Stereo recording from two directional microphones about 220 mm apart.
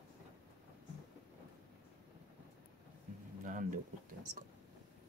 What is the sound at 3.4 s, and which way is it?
Speech, 35° right (ahead or behind).